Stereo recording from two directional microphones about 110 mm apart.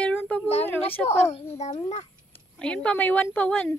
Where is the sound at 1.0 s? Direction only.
80° left.